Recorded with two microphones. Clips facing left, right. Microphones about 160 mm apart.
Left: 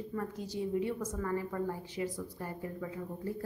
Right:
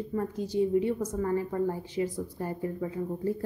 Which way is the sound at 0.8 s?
25° right (ahead or behind).